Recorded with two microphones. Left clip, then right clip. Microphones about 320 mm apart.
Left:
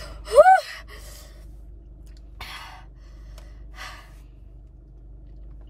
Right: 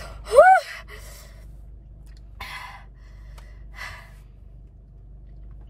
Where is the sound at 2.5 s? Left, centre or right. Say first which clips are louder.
Right 2 dB; centre.